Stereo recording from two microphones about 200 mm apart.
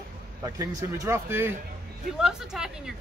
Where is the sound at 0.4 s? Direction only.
15° right (ahead or behind).